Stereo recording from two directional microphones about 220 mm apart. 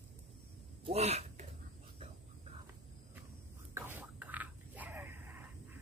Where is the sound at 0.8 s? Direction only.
30° right (ahead or behind).